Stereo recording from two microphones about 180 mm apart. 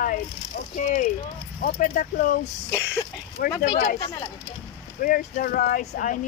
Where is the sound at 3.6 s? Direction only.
55° left (ahead or behind).